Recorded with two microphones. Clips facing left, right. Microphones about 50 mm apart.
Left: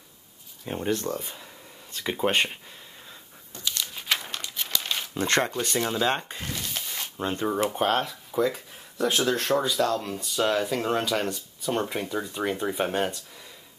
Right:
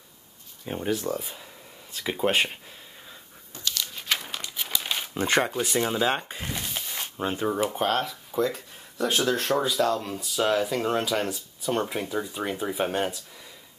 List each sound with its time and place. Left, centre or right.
0.7 s speech: centre
3.6 s crumpling: centre
6.5 s a sound: centre
6.9 s speech: centre